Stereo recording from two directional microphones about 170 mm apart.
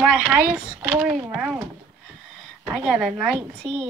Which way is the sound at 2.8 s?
Centre (ahead or behind).